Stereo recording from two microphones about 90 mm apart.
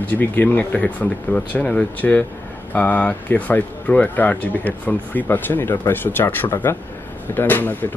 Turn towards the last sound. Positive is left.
turn(degrees=20)  # may be behind; listen again after turning